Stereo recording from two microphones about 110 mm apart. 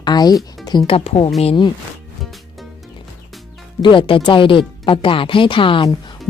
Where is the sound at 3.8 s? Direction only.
50° left (ahead or behind).